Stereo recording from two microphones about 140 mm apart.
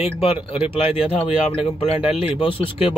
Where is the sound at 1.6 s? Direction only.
40° left (ahead or behind).